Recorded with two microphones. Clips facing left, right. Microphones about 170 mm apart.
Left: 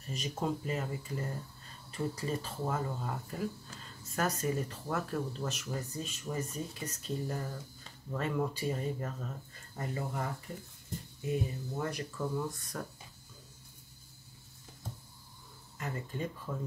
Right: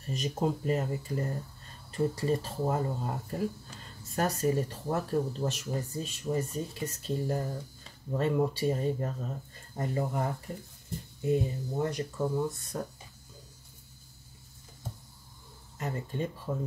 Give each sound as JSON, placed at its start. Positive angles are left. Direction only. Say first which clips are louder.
{"t": 0.0, "sound": "speech", "louder": "right 5 dB", "side_deg": -40}
{"t": 11.4, "sound": "speech", "louder": "right 5 dB", "side_deg": -30}
{"t": 15.8, "sound": "speech", "louder": "right 4 dB", "side_deg": -35}